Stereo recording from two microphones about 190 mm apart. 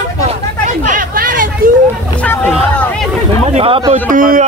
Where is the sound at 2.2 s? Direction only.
10° left (ahead or behind).